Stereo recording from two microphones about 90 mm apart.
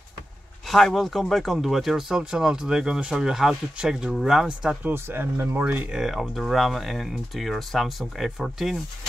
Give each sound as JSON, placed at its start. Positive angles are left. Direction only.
{"t": 0.7, "sound": "speech", "side_deg": 0}
{"t": 4.9, "sound": "speech", "side_deg": -25}
{"t": 5.9, "sound": "speech", "side_deg": 0}